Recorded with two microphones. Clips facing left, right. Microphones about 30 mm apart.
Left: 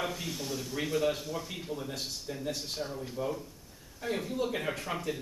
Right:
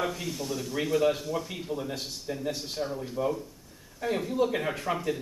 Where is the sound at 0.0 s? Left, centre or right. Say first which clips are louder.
Right 4 dB; centre.